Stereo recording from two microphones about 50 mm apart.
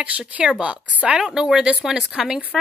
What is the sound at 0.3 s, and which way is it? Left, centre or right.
A woman's voice, right.